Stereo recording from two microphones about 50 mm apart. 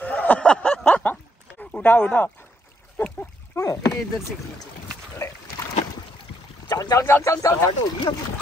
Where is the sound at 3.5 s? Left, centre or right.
Left.